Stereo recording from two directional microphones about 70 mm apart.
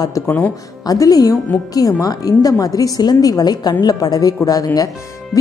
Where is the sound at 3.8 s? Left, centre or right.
Left.